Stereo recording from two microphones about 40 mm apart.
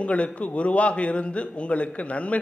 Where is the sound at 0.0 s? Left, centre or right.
Left.